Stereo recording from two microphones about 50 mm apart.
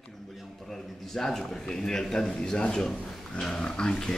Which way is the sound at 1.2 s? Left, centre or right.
Centre.